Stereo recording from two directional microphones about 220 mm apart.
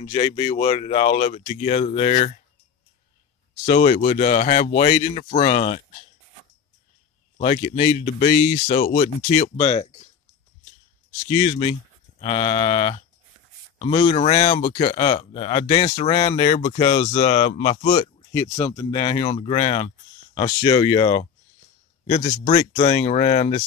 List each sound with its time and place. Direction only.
0.0 s speech: 30° left (ahead or behind)
3.6 s speech: 35° left (ahead or behind)
7.3 s speech: 30° left (ahead or behind)
9.6 s speech: 25° left (ahead or behind)
11.2 s speech: 25° left (ahead or behind)
22.4 s speech: 35° left (ahead or behind)